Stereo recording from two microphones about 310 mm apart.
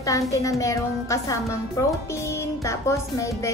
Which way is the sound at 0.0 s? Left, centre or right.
Centre.